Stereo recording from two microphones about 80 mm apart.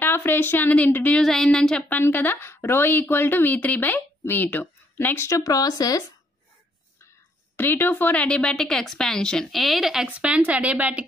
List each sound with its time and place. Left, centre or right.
0.0 s a woman's voice: left
1.1 s a woman's voice: centre
1.9 s speech: left
5.3 s speech: left
7.5 s a woman's voice: left; by 10.0 s centre
10.0 s speech: centre